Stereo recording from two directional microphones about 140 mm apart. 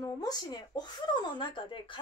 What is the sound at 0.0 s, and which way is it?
Speech, 25° left (ahead or behind).